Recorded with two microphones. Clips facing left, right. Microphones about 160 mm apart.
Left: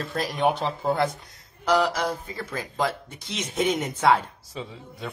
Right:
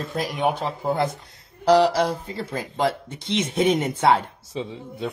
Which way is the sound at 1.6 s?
35° right (ahead or behind).